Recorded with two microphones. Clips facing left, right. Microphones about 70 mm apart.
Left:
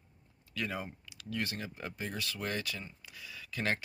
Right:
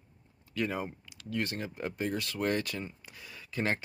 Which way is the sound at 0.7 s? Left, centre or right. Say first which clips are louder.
Right 4 dB; right.